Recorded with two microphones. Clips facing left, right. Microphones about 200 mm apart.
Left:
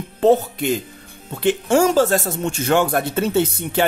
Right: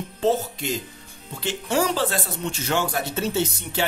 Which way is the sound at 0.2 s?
60° left (ahead or behind).